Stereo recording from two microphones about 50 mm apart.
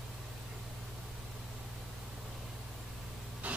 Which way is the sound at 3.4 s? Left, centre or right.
Right.